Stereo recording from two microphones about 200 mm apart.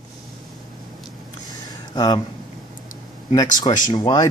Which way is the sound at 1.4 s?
20° left (ahead or behind).